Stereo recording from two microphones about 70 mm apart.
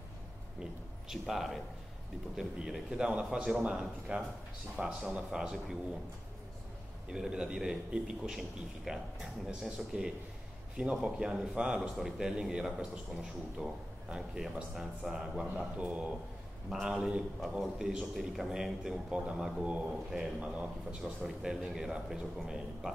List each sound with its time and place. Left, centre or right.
1.0 s a man's voice: centre
7.1 s a man's voice: centre
16.6 s a man's voice: centre
21.0 s a man's voice: centre